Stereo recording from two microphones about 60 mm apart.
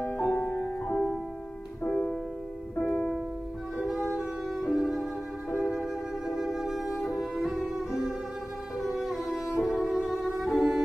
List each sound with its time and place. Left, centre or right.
0.0 s music: left
0.4 s music: left
0.8 s music: centre
3.7 s music: centre